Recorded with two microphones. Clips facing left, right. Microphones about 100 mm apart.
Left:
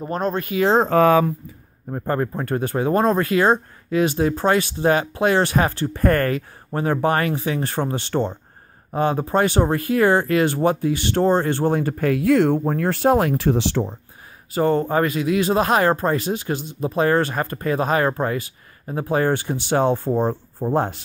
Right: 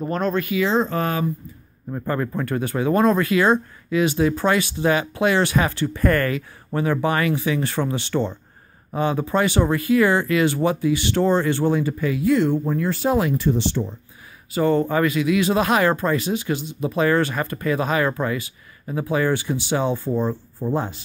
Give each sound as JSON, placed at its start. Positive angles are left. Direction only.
{"t": 0.1, "sound": "speech", "side_deg": 35}
{"t": 0.8, "sound": "speech", "side_deg": 80}
{"t": 1.9, "sound": "speech", "side_deg": 45}
{"t": 14.5, "sound": "speech", "side_deg": 40}